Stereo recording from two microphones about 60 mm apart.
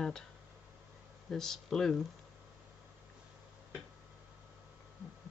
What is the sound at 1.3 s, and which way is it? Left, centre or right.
Speech, centre.